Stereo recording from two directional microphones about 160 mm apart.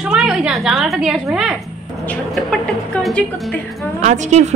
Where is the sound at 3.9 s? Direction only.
50° right (ahead or behind).